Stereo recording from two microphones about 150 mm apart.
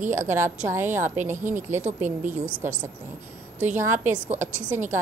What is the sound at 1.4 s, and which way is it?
Speech, 55° right (ahead or behind).